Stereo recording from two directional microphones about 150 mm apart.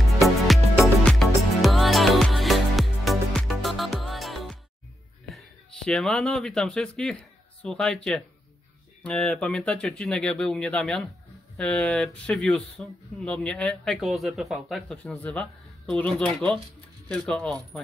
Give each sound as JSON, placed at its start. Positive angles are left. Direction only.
{"t": 0.2, "sound": "music", "side_deg": 0}
{"t": 5.3, "sound": "speech", "side_deg": 5}